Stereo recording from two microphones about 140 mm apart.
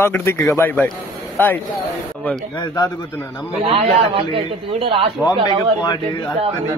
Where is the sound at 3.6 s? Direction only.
45° right (ahead or behind).